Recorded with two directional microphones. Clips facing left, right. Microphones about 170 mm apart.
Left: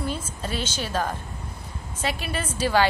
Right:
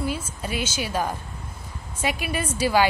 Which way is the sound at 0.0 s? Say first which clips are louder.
Right 1 dB; 10° right (ahead or behind).